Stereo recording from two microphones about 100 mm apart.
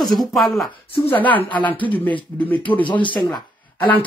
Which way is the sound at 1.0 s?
15° left (ahead or behind).